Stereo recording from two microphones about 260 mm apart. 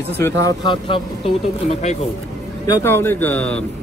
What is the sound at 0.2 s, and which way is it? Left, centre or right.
Speech, centre.